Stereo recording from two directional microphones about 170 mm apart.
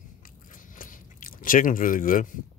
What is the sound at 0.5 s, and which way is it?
Chewing, 55° left (ahead or behind).